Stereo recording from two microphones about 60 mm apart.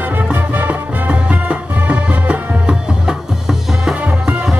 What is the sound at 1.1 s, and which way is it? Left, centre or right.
Music, right.